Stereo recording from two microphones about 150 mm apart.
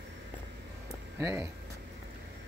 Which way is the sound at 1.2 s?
20° right (ahead or behind).